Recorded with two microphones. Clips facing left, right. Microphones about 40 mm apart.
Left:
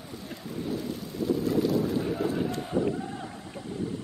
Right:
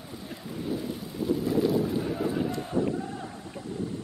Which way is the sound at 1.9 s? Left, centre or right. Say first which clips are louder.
Left 1 dB; centre.